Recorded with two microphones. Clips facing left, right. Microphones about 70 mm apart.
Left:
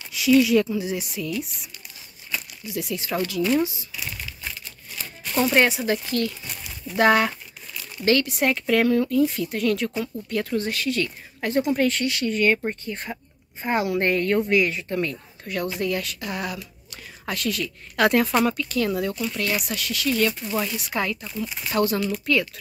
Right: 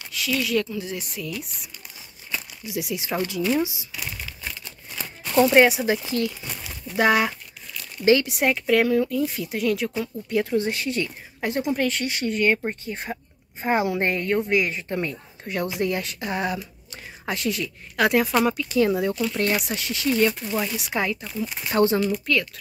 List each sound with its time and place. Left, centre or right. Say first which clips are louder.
0.1 s speech: left 7 dB; centre
2.3 s a woman's voice: even; centre
5.5 s a woman's voice: right 1 dB; centre
8.0 s a woman's voice: right 2 dB; centre
11.4 s a woman's voice: left 2 dB; centre
11.7 s speech: left 2 dB; centre
12.0 s speech: left 2 dB; right
12.4 s a woman's voice: even; centre
14.5 s a woman's voice: left 2 dB; right
17.9 s a woman's voice: left 1 dB; centre
21.7 s speech: right 3 dB; right
22.2 s speech: left 1 dB; centre